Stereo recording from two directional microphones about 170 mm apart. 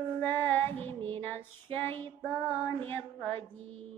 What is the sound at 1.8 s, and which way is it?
Child singing, 10° left (ahead or behind).